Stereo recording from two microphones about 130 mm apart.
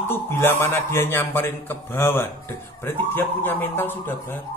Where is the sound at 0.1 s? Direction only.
15° left (ahead or behind).